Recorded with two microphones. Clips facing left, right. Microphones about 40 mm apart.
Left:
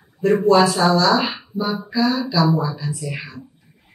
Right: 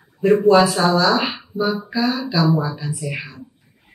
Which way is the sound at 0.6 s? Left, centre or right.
Centre.